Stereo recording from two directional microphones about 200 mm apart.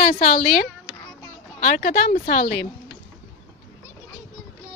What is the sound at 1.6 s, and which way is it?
Speech, 40° left (ahead or behind).